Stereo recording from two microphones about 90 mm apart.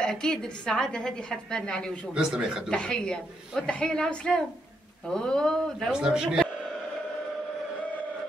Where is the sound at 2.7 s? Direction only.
10° left (ahead or behind).